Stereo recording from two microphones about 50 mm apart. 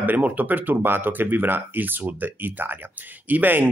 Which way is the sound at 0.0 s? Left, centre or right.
Right.